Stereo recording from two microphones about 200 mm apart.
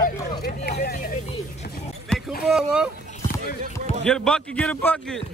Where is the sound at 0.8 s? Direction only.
50° left (ahead or behind).